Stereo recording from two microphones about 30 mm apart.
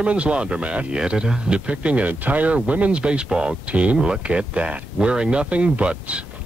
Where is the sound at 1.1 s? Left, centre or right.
Right.